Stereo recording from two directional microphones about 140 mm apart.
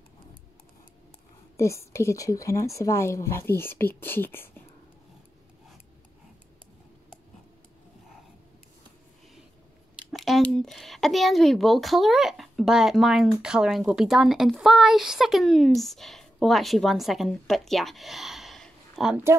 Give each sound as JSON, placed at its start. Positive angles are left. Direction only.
{"t": 1.6, "sound": "a woman's voice", "side_deg": 20}
{"t": 10.1, "sound": "speech", "side_deg": 0}